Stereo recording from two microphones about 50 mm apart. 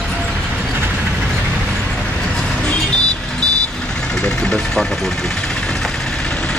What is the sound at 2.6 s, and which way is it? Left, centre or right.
Music, centre.